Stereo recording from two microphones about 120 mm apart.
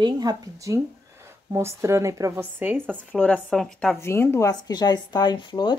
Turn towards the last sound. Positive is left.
turn(degrees=40)  # may be behind; listen again after turning